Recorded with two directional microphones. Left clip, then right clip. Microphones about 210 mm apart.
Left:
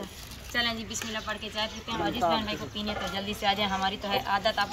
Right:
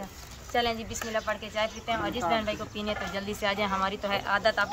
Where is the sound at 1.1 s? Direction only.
15° right (ahead or behind).